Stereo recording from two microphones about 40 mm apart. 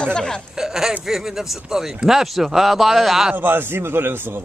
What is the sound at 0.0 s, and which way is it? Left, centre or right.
Speech, left.